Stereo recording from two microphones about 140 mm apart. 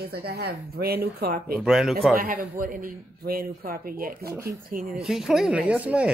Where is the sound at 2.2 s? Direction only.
85° right.